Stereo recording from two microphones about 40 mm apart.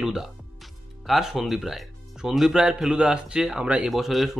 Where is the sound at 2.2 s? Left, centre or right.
Centre.